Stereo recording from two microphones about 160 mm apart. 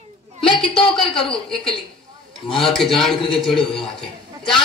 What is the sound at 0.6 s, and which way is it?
A man's voice, 5° left (ahead or behind).